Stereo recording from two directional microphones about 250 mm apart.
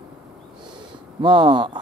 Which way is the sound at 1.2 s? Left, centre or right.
Centre.